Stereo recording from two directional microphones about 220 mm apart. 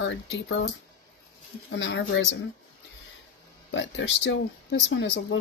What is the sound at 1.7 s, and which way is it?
Speech, 55° left (ahead or behind).